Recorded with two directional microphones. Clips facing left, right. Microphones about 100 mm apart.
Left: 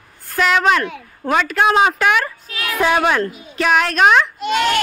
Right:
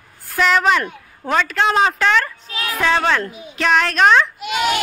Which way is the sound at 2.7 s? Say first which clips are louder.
Left 2 dB; 15° left (ahead or behind).